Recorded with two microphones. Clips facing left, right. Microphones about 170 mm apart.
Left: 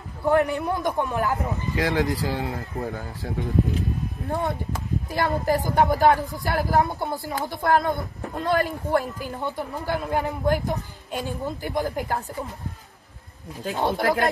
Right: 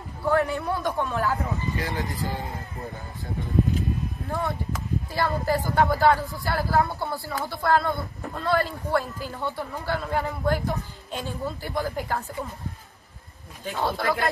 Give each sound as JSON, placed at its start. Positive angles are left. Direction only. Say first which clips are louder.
{"t": 0.2, "sound": "a woman's voice", "louder": "left 3 dB", "side_deg": 20}
{"t": 1.8, "sound": "speech", "louder": "left 6 dB", "side_deg": 80}
{"t": 4.7, "sound": "a woman's voice", "louder": "left 1 dB", "side_deg": 20}
{"t": 13.7, "sound": "speech", "louder": "left 3 dB", "side_deg": 20}